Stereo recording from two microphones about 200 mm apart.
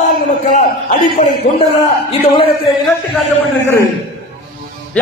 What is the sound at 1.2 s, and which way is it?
A man's voice, 40° left (ahead or behind).